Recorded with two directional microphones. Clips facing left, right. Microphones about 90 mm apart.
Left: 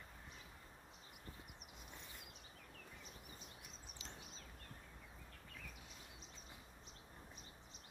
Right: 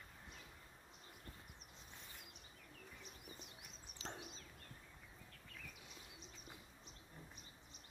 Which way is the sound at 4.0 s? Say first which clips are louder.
Right 8 dB; 35° right (ahead or behind).